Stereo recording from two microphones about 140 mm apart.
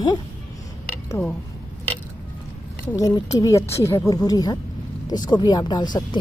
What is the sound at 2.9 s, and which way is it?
Speech, 25° left (ahead or behind).